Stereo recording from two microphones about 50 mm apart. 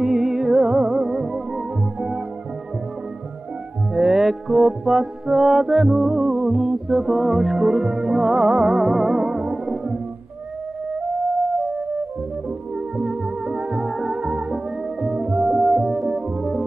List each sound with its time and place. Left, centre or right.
0.0 s music: centre
3.9 s music: centre
7.5 s music: centre
8.0 s music: centre
8.5 s music: centre
8.7 s music: centre
9.5 s music: centre
12.9 s music: centre
13.7 s music: centre
16.1 s organ: right